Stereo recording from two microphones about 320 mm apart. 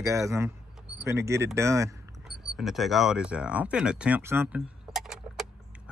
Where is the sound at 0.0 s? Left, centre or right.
Centre.